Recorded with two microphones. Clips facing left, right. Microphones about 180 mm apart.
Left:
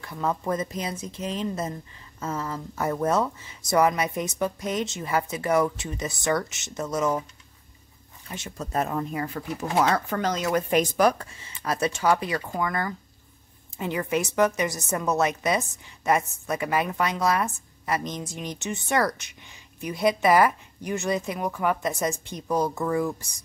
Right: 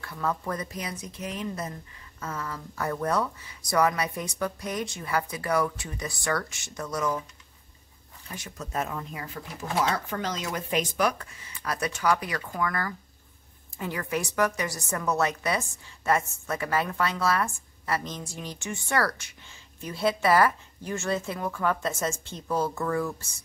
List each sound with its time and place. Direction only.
0.0 s speech: 20° left (ahead or behind)
8.3 s a woman's voice: 25° left (ahead or behind)